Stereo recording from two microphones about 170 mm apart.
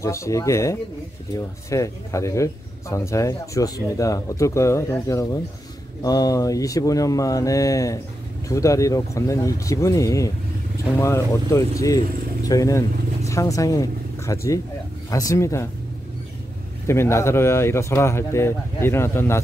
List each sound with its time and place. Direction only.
0.0 s speech: 20° left (ahead or behind)
16.8 s speech: 15° left (ahead or behind)